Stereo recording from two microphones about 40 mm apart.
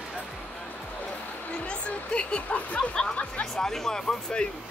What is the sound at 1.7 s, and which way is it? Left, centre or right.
Speech, left.